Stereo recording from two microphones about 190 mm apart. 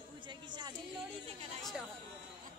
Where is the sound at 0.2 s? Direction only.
25° right (ahead or behind).